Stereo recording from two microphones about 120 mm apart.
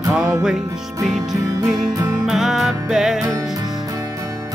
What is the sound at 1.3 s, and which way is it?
Music, 30° right (ahead or behind).